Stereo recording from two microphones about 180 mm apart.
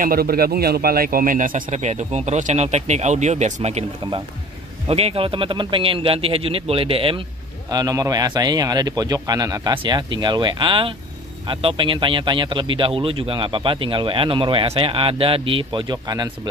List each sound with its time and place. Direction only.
0.0 s a man's voice: 55° right (ahead or behind); by 3.8 s 40° right (ahead or behind)
4.8 s a man's voice: 35° right (ahead or behind)
7.7 s a man's voice: 20° right (ahead or behind)